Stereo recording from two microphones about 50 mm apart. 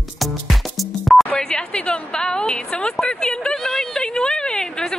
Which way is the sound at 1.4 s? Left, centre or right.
Centre.